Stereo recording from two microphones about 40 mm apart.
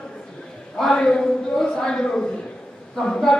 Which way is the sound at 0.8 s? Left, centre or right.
Centre.